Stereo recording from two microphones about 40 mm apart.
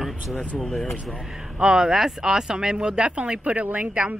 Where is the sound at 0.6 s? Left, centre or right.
Centre.